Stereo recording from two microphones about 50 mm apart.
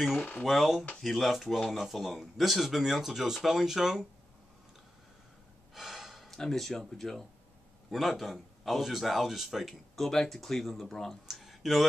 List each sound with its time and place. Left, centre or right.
0.2 s speech: left
0.5 s a man's voice: centre
5.8 s gasp: centre
6.3 s a man's voice: centre
11.2 s a sound: centre